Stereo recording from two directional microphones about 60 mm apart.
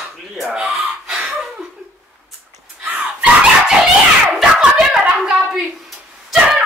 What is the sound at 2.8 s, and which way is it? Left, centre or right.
Dog, right.